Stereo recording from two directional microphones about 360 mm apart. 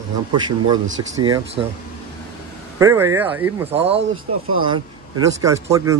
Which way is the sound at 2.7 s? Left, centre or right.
Centre.